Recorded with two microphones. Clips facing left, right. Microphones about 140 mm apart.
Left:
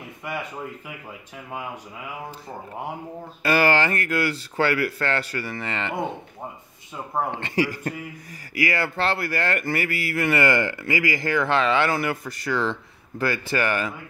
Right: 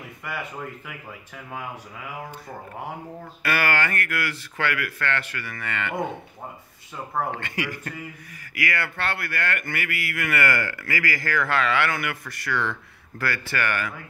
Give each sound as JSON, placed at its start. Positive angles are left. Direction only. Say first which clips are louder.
{"t": 0.2, "sound": "speech", "louder": "left 2 dB", "side_deg": 20}
{"t": 3.4, "sound": "speech", "louder": "left 5 dB", "side_deg": 25}
{"t": 7.2, "sound": "speech", "louder": "left 5 dB", "side_deg": 25}